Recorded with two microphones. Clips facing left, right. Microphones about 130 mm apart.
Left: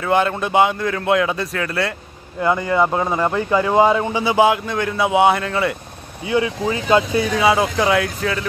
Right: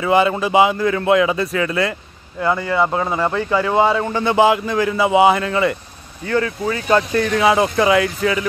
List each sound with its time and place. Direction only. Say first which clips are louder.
0.0 s a man's voice: right 2 dB; centre (ahead or behind)
2.4 s speech: left 1 dB; 15° left (ahead or behind)
2.8 s a man's voice: even; 5° left (ahead or behind)
6.2 s speech: even; 15° left (ahead or behind)
7.0 s a man's voice: right 1 dB; 5° left (ahead or behind)